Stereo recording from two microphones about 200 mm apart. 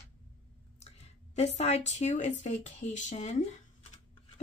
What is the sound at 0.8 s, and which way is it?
A woman's voice, 35° left (ahead or behind).